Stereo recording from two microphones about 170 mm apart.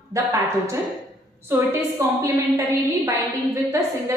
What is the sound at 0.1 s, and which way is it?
A woman's voice, 20° right (ahead or behind).